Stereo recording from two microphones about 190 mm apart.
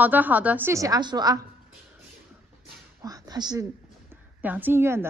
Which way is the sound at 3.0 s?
20° right (ahead or behind).